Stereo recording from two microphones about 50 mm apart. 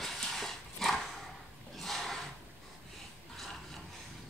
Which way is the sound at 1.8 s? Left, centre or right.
Centre.